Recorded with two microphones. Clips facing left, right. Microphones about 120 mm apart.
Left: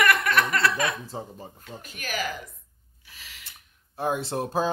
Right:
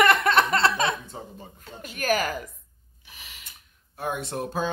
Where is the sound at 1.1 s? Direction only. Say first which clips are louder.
Left 3 dB; 35° left (ahead or behind).